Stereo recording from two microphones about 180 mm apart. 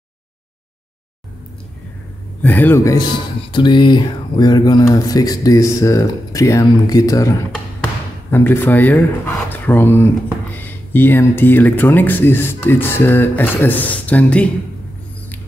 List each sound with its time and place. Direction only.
2.4 s speech: 10° left (ahead or behind)